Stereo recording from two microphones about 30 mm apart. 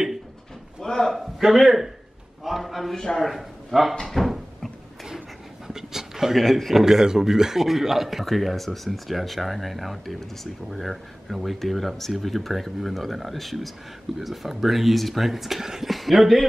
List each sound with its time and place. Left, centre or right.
0.8 s a man's voice: centre
1.1 s a man's voice: centre
5.7 s pant: centre
6.3 s speech: centre
6.8 s speech: centre
15.6 s speech: centre
15.9 s speech: centre